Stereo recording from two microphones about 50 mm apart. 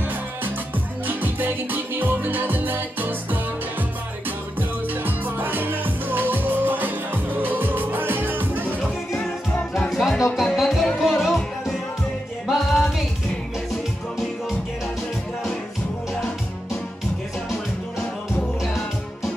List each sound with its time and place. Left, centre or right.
1.0 s music: right
4.6 s music: right
9.8 s music: centre